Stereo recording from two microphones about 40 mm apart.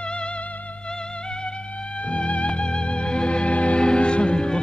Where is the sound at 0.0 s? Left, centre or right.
Left.